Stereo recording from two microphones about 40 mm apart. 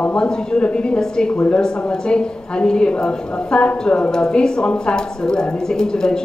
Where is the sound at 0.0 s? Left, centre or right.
Left.